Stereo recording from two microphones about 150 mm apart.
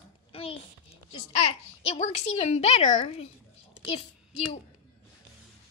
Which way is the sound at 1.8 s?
50° left (ahead or behind).